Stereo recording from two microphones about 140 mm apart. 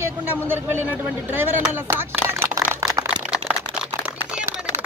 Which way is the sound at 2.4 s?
20° right (ahead or behind).